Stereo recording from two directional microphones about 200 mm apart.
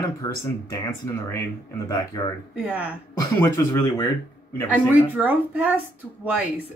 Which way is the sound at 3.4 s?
10° left (ahead or behind).